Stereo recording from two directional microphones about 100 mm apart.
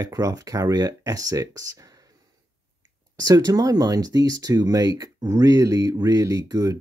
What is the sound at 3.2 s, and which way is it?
Speech, 35° right (ahead or behind).